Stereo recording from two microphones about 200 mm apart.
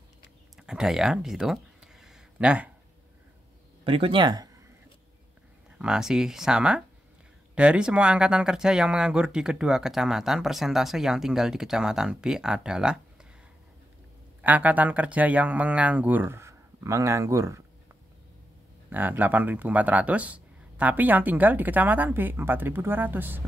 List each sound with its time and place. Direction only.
0.6 s a sound: 5° right (ahead or behind)
3.8 s speech: 25° right (ahead or behind)
5.8 s speech: 5° right (ahead or behind)
14.4 s speech: 10° right (ahead or behind)
18.9 s speech: 10° right (ahead or behind)